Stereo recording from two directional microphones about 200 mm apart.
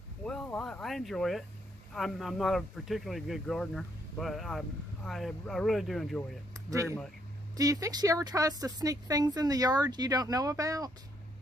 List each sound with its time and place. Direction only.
0.2 s a sound: 5° left (ahead or behind)
2.0 s speech: centre (ahead or behind)
6.7 s speech: 15° right (ahead or behind)